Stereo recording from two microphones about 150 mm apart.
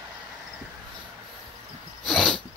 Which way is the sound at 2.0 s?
5° left (ahead or behind).